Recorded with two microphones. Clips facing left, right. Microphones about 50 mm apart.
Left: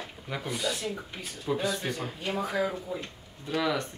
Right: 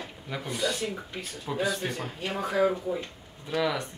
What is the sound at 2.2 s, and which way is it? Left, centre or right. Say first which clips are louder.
Speech: right 4 dB; right.